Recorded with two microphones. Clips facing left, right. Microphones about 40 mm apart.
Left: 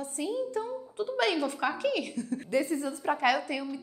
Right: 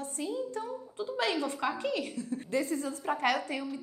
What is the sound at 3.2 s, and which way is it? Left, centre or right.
Speech, left.